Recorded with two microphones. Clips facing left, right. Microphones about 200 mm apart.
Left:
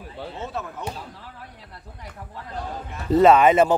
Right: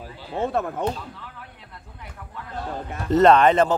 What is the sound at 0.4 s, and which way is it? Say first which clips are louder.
Speech: right 10 dB; 55° right (ahead or behind).